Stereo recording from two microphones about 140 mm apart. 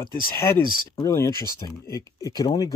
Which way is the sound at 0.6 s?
90° left.